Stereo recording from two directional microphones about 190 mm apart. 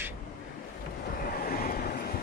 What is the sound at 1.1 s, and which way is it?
Vehicle, 50° left (ahead or behind).